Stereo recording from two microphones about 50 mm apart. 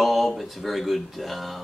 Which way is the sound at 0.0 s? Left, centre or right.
Centre.